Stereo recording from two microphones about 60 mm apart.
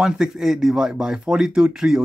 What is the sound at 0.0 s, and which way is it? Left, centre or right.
A man's voice, centre.